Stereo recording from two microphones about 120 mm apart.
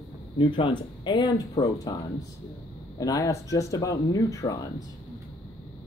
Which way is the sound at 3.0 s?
30° left (ahead or behind).